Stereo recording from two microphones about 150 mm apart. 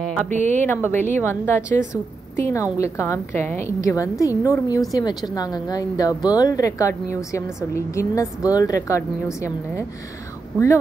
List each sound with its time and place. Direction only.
0.3 s speech: 55° right (ahead or behind)
0.6 s a woman's voice: 15° left (ahead or behind)